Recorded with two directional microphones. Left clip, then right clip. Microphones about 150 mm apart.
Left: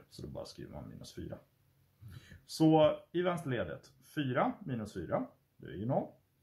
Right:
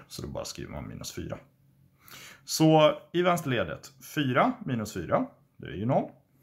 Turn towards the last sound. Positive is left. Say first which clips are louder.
# right 8 dB
turn(degrees=-25)  # may be behind; listen again after turning